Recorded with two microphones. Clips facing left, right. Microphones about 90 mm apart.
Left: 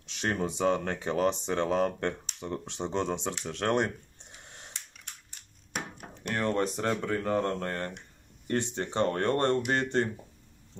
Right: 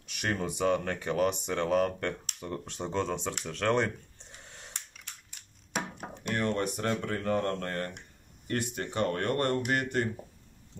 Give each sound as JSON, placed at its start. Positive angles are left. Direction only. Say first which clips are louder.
{"t": 0.0, "sound": "speech", "louder": "left 2 dB", "side_deg": 25}
{"t": 6.3, "sound": "speech", "louder": "left 2 dB", "side_deg": 30}